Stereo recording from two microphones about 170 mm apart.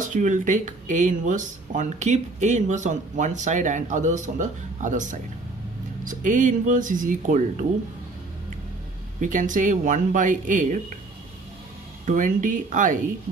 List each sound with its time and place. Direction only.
0.1 s speech: 45° right (ahead or behind)
9.2 s speech: 50° right (ahead or behind)
12.1 s speech: 50° right (ahead or behind)